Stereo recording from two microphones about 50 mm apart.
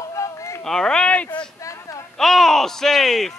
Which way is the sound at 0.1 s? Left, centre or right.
Left.